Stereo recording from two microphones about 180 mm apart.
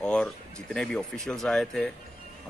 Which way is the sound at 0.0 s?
5° left (ahead or behind).